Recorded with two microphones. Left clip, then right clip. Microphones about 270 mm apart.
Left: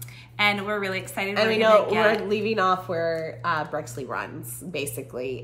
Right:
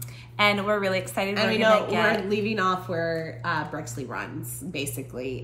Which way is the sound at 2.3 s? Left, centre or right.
Centre.